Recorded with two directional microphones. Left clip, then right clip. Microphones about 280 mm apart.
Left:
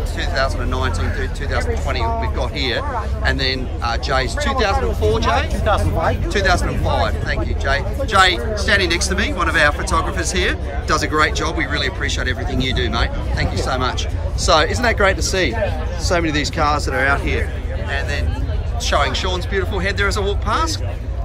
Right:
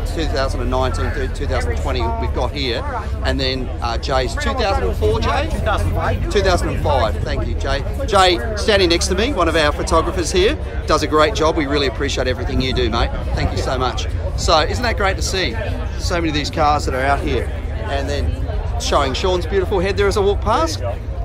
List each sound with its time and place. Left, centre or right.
0.2 s speech: centre
5.6 s speech: left
6.3 s speech: centre
18.9 s speech: centre